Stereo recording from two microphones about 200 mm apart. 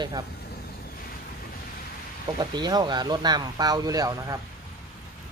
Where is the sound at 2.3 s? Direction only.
20° right (ahead or behind).